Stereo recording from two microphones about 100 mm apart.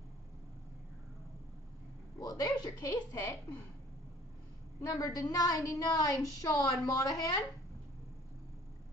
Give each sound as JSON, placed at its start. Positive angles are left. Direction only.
{"t": 2.1, "sound": "speech", "side_deg": 40}
{"t": 4.8, "sound": "a woman's voice", "side_deg": 35}